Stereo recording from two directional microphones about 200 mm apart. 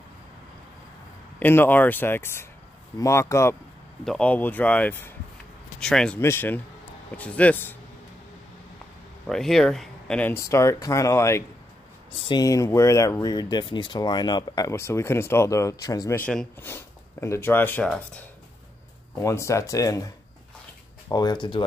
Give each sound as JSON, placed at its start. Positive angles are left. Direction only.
{"t": 1.4, "sound": "speech", "side_deg": 10}
{"t": 9.3, "sound": "speech", "side_deg": 0}
{"t": 19.2, "sound": "speech", "side_deg": 15}
{"t": 21.1, "sound": "speech", "side_deg": 20}